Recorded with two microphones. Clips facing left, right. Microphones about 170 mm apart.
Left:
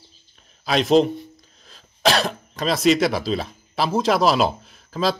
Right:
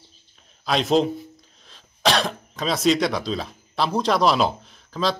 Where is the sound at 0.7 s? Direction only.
Centre (ahead or behind).